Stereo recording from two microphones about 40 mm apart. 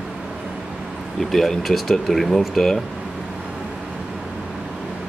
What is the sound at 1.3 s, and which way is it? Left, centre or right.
Speech, centre.